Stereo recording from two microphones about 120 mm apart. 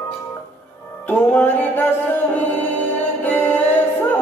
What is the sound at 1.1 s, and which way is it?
Music, 15° left (ahead or behind).